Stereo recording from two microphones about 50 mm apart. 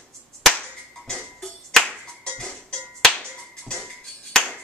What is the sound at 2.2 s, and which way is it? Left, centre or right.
Music, centre.